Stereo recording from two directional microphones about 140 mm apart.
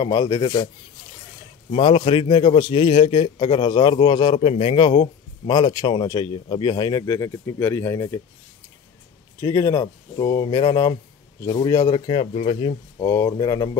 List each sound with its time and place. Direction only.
0.0 s speech: 30° left (ahead or behind)
1.7 s a man's voice: 40° left (ahead or behind); by 8.2 s 20° left (ahead or behind)
9.4 s a man's voice: 20° left (ahead or behind)
12.1 s speech: 45° left (ahead or behind)
13.0 s speech: 20° left (ahead or behind)